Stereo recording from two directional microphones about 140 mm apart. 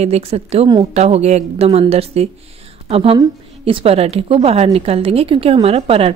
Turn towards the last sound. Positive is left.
turn(degrees=-45)  # may be behind; listen again after turning